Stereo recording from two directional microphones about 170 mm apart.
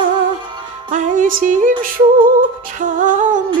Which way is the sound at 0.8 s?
50° right (ahead or behind).